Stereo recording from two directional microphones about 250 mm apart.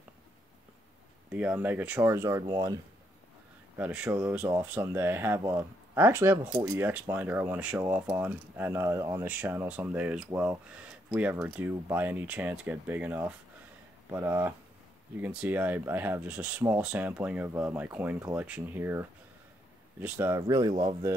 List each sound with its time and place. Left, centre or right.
1.3 s speech: centre
3.7 s speech: centre